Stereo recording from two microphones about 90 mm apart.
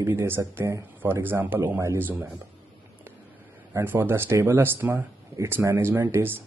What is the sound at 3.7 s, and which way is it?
Speech, 25° right (ahead or behind).